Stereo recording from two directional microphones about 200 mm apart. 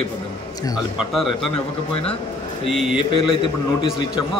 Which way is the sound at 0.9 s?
Centre (ahead or behind).